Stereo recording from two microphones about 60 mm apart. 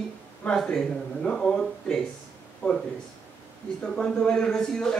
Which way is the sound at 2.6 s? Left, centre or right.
Left.